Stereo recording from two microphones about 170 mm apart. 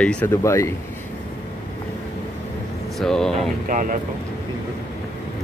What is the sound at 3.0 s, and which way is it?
Speech, 5° left (ahead or behind).